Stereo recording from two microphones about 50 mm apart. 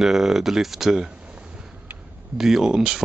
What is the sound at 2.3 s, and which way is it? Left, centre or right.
Speech, centre.